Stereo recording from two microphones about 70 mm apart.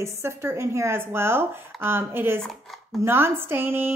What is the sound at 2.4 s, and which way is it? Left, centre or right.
Speech, centre.